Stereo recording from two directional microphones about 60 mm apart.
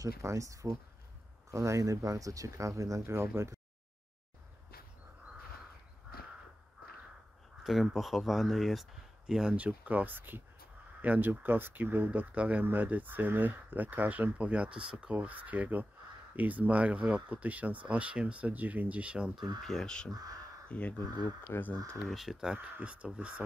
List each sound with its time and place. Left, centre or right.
0.2 s speech: right
7.6 s speech: centre
9.3 s speech: centre
15.1 s speech: right
19.6 s speech: centre
20.1 s speech: right
20.6 s speech: left
21.5 s speech: left
22.0 s speech: centre
22.8 s speech: centre